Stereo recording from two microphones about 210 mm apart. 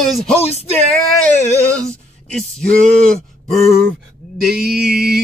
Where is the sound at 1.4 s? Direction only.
30° left (ahead or behind).